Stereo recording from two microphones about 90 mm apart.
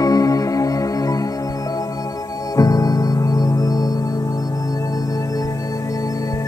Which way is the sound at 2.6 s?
40° left (ahead or behind).